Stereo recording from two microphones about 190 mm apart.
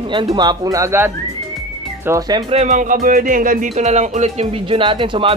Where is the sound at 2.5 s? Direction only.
35° right (ahead or behind).